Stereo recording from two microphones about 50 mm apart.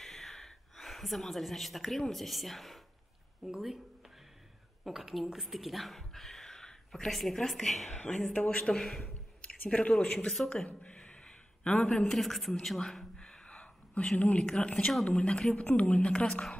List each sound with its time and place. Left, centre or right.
0.0 s a woman's voice: centre
3.4 s speech: centre
4.8 s speech: centre
8.3 s a woman's voice: left
8.7 s a woman's voice: centre
9.4 s speech: left
10.2 s a woman's voice: centre
10.8 s a sound: left
12.1 s a woman's voice: centre
13.2 s a sound: left
14.4 s a woman's voice: centre